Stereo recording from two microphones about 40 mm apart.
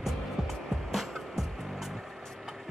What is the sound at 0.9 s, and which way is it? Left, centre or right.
Music, centre.